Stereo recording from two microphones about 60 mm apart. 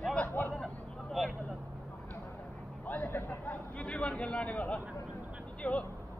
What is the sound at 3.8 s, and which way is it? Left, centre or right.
A man's voice, centre.